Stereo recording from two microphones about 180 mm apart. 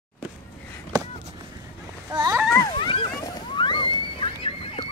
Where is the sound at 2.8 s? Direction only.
30° left (ahead or behind).